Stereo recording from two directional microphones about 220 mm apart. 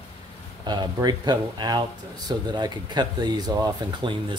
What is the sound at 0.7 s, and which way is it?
Speech, 20° right (ahead or behind).